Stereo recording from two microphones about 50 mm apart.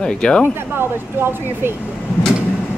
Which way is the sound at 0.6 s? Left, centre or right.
Right.